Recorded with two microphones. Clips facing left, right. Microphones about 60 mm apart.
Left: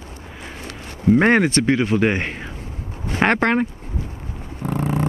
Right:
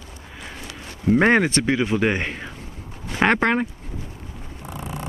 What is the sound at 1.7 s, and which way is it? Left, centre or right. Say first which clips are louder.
Speech: left 3 dB; left.